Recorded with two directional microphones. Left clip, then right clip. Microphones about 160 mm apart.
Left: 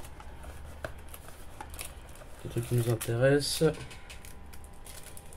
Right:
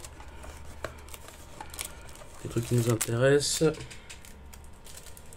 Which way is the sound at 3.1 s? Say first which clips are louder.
Right 2 dB; 25° right (ahead or behind).